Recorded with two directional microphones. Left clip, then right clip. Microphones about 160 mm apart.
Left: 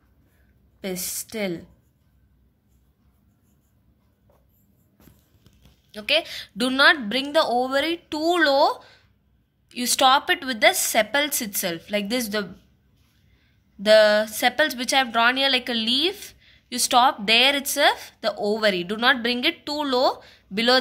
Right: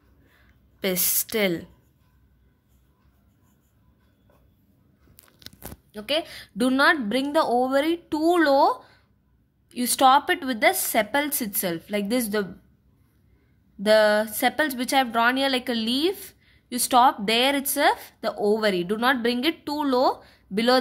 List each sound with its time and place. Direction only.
0.7 s a woman's voice: 15° right (ahead or behind)
5.9 s a woman's voice: 20° right (ahead or behind)
13.8 s a woman's voice: 15° right (ahead or behind)